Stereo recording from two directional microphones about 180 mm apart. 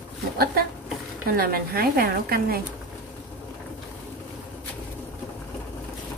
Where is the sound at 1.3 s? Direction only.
55° right (ahead or behind).